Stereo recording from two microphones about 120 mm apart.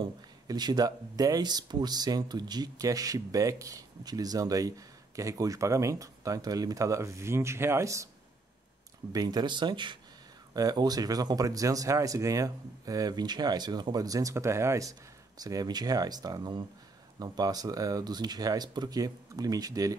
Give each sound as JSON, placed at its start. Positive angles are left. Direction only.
{"t": 0.0, "sound": "speech", "side_deg": -35}
{"t": 9.1, "sound": "speech", "side_deg": -35}